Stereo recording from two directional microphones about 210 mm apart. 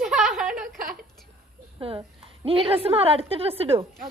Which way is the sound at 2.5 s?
25° right (ahead or behind).